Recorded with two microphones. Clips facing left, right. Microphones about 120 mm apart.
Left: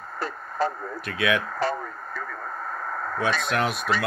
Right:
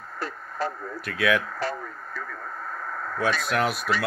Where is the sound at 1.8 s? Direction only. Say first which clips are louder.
Left 2 dB; 50° left (ahead or behind).